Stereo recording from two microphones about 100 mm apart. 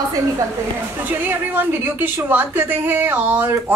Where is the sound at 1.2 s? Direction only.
20° right (ahead or behind).